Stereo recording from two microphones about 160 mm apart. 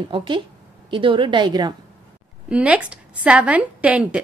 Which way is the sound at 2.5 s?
5° right (ahead or behind).